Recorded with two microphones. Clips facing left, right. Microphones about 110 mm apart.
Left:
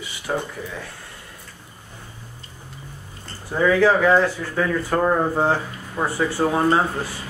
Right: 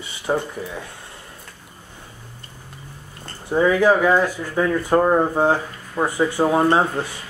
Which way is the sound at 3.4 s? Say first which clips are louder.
Right 1 dB; 20° right (ahead or behind).